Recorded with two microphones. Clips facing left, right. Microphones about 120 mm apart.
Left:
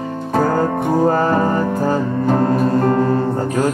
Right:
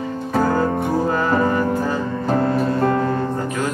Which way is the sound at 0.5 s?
40° left (ahead or behind).